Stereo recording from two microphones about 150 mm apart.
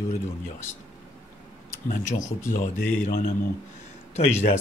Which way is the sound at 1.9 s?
60° left (ahead or behind).